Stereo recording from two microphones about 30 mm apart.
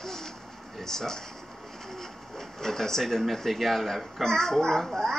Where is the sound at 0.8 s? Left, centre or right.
Centre.